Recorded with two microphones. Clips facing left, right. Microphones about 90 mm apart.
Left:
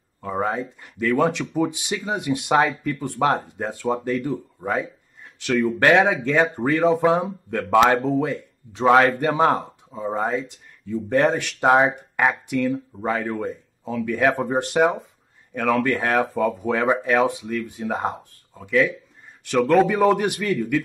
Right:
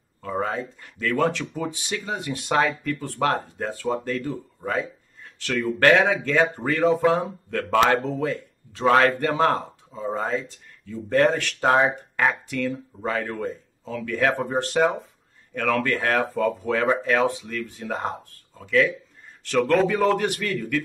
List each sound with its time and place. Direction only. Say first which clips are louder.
0.2 s a sound: left 2 dB; 15° left (ahead or behind)
0.6 s speech: left 3 dB; 15° left (ahead or behind)
6.8 s speech: even; 5° left (ahead or behind)
14.3 s speech: left 2 dB; centre (ahead or behind)
14.6 s speech: left 1 dB; 15° left (ahead or behind)